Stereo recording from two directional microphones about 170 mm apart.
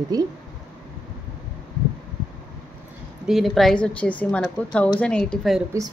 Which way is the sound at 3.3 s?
Centre (ahead or behind).